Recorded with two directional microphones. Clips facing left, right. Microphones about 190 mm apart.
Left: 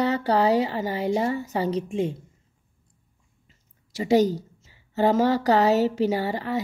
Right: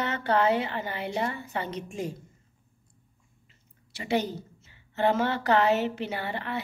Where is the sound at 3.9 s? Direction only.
40° left (ahead or behind).